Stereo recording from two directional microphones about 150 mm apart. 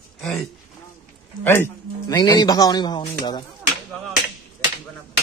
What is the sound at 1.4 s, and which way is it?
Speech, 15° left (ahead or behind).